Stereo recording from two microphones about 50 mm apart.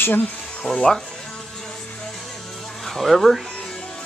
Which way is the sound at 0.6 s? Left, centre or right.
Centre.